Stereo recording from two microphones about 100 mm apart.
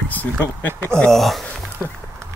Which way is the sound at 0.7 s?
25° right (ahead or behind).